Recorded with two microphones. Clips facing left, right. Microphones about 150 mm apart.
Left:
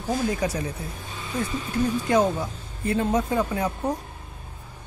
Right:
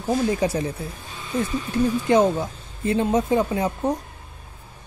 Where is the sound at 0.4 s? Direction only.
30° right (ahead or behind).